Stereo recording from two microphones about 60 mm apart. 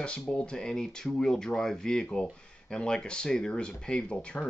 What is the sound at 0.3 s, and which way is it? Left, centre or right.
Speech, centre.